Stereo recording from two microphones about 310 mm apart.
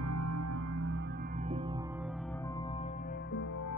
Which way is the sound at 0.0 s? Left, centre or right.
Right.